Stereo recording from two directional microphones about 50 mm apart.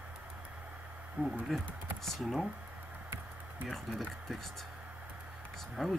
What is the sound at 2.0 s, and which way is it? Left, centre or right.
Speech, centre.